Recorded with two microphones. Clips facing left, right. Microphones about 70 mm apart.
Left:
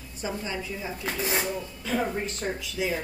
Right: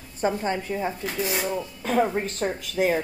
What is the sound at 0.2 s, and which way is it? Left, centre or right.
Speech, right.